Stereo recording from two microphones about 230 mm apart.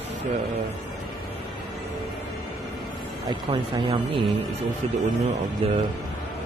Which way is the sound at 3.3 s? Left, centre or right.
Centre.